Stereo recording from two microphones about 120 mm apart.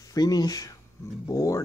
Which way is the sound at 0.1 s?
35° left (ahead or behind).